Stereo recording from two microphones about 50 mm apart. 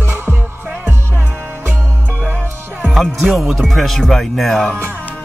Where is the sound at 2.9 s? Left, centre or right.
Centre.